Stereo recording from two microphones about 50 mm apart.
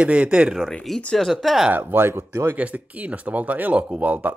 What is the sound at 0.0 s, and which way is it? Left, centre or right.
Speech, right.